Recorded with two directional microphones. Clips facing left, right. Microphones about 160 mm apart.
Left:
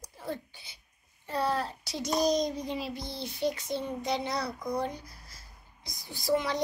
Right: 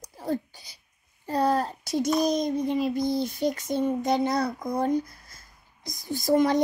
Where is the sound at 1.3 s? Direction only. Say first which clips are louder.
Right 6 dB; 40° right (ahead or behind).